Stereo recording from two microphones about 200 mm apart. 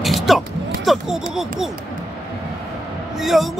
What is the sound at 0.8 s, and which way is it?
Speech, centre (ahead or behind).